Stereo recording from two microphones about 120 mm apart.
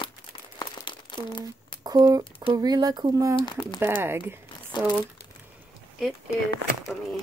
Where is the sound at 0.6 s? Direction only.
40° left (ahead or behind).